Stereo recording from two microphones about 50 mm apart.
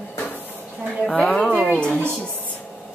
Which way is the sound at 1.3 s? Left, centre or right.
Centre.